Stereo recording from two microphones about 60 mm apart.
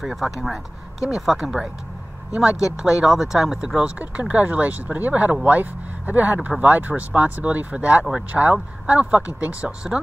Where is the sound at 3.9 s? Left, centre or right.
Right.